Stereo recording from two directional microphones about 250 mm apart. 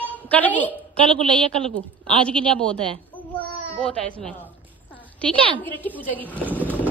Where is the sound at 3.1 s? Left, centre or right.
Centre.